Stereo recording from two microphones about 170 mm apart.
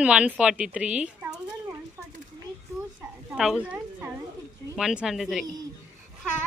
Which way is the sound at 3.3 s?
5° right (ahead or behind).